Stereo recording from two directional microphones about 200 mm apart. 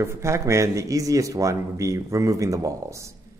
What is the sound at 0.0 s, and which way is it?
Speech, 15° right (ahead or behind).